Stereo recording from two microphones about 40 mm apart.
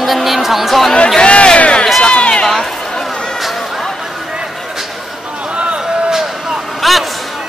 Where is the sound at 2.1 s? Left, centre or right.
Left.